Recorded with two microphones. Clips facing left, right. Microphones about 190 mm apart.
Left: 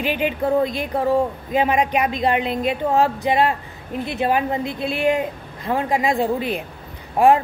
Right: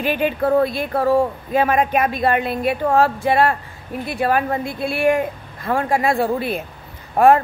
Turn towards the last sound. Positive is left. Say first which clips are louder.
# right 2 dB
turn(degrees=15)  # may be behind; listen again after turning